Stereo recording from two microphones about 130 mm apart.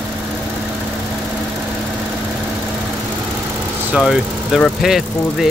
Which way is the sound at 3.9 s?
5° right (ahead or behind).